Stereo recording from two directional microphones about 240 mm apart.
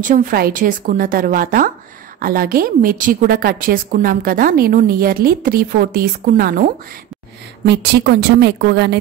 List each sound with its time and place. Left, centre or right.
0.0 s a woman's voice: right
7.6 s a woman's voice: right